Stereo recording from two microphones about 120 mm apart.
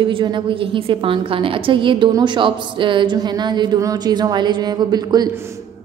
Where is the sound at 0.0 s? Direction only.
40° right (ahead or behind).